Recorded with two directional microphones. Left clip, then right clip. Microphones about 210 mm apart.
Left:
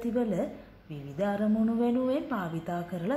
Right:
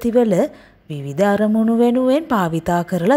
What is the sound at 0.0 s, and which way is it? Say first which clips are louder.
A woman's voice: right 15 dB; 45° right (ahead or behind).